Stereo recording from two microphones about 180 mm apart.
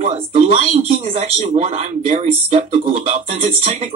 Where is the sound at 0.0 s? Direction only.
40° right (ahead or behind).